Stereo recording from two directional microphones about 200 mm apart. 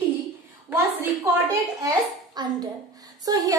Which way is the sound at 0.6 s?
10° right (ahead or behind).